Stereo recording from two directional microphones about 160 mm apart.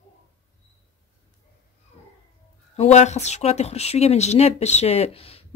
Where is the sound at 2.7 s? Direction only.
45° left (ahead or behind).